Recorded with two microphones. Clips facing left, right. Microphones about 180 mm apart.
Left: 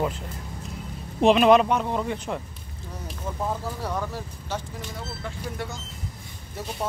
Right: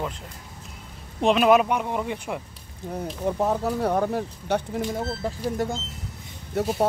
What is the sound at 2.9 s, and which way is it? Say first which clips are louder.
Speech: right 8 dB; 65° right (ahead or behind).